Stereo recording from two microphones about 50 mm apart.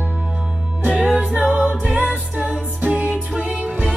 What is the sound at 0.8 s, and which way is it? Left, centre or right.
Music, right.